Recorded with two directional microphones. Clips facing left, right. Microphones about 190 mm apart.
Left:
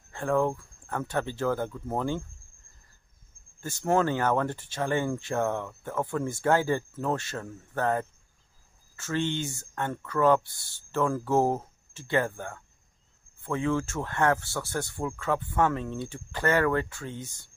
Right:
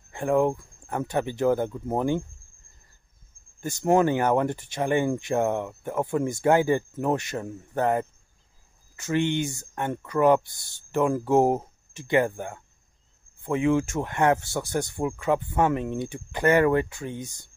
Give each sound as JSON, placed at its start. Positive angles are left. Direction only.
{"t": 0.1, "sound": "speech", "side_deg": -15}
{"t": 3.6, "sound": "speech", "side_deg": -15}